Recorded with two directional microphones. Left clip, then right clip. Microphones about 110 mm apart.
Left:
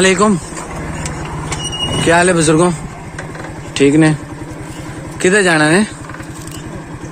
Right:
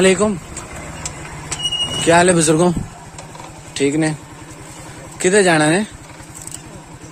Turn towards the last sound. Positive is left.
turn(degrees=-25)  # may be behind; listen again after turning